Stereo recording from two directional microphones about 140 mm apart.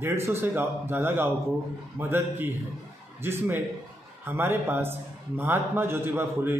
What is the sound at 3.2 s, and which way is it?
A man's voice, 15° right (ahead or behind).